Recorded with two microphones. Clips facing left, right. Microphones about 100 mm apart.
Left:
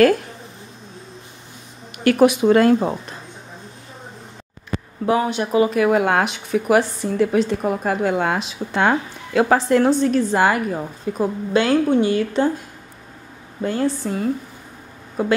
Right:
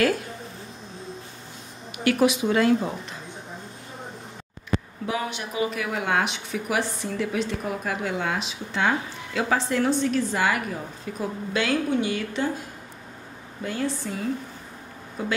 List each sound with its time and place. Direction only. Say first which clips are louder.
2.0 s speech: left 7 dB; 50° left (ahead or behind)
5.0 s speech: left 10 dB; 45° left (ahead or behind)
13.6 s speech: left 7 dB; 40° left (ahead or behind)
15.2 s a woman's voice: left 9 dB; 55° left (ahead or behind)